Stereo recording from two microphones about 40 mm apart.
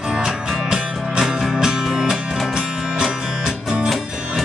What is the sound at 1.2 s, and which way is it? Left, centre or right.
Music, centre.